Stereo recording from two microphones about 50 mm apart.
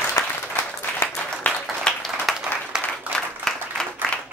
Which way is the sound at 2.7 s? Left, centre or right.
Centre.